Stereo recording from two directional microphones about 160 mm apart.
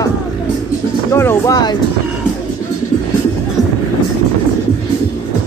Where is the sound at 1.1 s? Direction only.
15° left (ahead or behind).